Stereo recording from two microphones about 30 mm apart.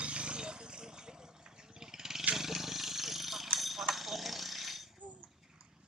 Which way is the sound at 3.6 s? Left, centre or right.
Centre.